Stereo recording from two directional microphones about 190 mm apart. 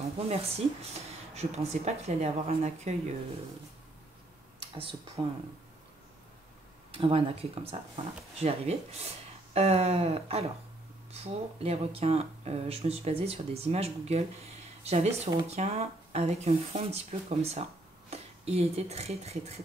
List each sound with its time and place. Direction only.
0.3 s speech: 35° right (ahead or behind)
4.6 s a sound: 30° right (ahead or behind)
6.9 s speech: 30° right (ahead or behind)